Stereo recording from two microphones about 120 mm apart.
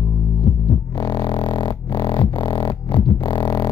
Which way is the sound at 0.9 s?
40° left (ahead or behind).